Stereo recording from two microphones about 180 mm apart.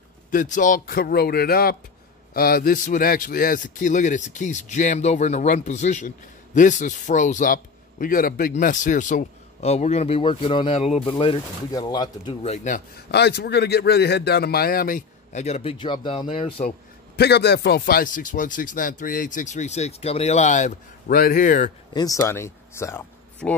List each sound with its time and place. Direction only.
0.3 s speech: 45° left (ahead or behind); by 12.4 s 25° left (ahead or behind)
12.4 s speech: 45° left (ahead or behind)
13.1 s speech: 65° left (ahead or behind); by 16.6 s 30° left (ahead or behind)
17.2 s speech: 65° left (ahead or behind); by 21.7 s 45° left (ahead or behind)
21.9 s speech: 20° left (ahead or behind)